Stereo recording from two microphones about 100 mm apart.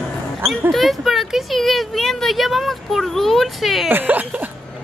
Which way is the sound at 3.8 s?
15° right (ahead or behind).